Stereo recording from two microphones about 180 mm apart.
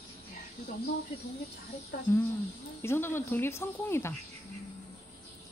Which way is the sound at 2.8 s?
15° left (ahead or behind).